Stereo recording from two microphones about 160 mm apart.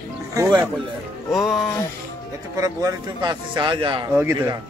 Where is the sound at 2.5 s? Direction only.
20° right (ahead or behind).